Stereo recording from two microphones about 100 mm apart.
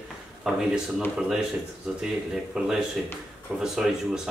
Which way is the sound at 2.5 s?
5° right (ahead or behind).